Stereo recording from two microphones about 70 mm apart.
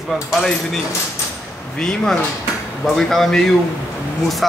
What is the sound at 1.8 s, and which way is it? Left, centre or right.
Speech, centre.